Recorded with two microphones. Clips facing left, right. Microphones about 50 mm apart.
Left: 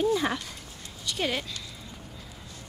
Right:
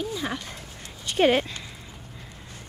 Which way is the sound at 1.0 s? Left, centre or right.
Right.